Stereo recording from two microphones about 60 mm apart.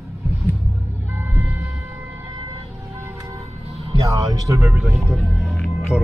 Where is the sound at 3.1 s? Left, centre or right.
Right.